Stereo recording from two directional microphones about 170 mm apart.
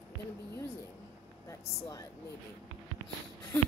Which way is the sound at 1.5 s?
20° left (ahead or behind).